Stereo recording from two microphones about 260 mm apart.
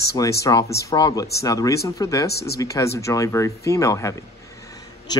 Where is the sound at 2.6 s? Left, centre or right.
Centre.